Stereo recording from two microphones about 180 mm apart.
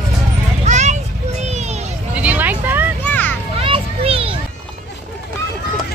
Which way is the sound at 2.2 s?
10° right (ahead or behind).